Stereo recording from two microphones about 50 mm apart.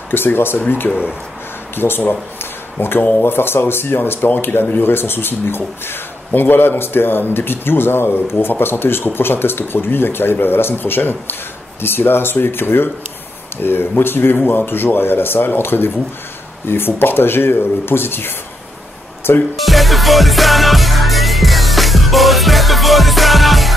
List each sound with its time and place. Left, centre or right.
0.1 s speech: left
1.8 s speech: left
19.5 s music: centre